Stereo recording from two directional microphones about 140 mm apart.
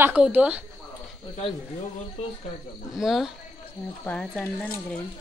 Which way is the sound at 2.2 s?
45° left (ahead or behind).